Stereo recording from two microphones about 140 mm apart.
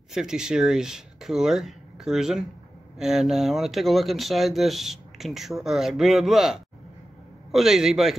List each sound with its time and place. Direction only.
0.1 s speech: 5° right (ahead or behind)